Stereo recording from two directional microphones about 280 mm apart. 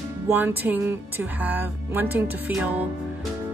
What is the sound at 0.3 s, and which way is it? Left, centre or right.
Speech, centre.